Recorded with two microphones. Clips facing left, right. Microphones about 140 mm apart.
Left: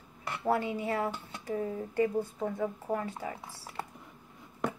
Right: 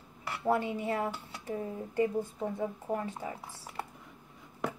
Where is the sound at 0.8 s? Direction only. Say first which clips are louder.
Left 1 dB; 25° right (ahead or behind).